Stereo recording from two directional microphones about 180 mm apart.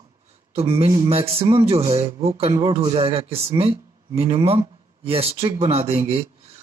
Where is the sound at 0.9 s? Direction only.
30° right (ahead or behind).